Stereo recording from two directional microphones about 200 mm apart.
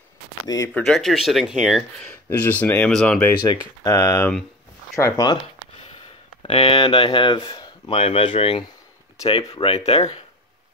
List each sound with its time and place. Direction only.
0.5 s speech: 15° left (ahead or behind)
0.8 s speech: centre (ahead or behind)
2.2 s speech: 10° left (ahead or behind)
6.4 s speech: 30° left (ahead or behind)